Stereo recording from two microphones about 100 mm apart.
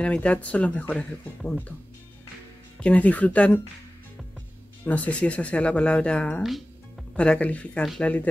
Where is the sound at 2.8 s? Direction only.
15° left (ahead or behind).